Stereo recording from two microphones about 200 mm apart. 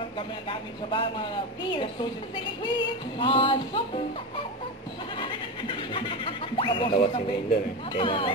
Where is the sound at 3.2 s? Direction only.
25° left (ahead or behind).